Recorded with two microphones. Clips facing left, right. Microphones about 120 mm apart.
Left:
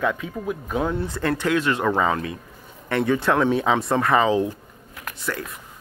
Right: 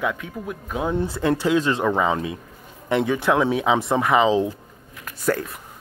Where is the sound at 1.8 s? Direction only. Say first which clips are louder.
Even; 10° right (ahead or behind).